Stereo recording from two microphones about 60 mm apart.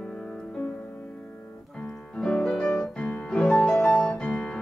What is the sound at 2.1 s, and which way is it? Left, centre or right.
Music, centre.